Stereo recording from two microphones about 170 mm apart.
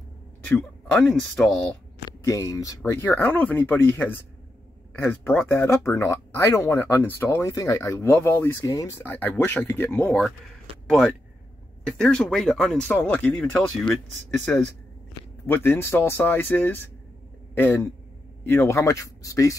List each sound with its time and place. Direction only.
0.6 s speech: 5° left (ahead or behind)
2.0 s speech: 20° left (ahead or behind)